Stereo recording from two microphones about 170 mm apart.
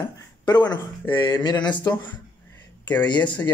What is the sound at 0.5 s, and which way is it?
Speech, 25° left (ahead or behind).